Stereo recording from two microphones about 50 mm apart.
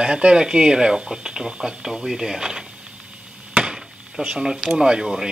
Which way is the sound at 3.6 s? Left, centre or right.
Centre.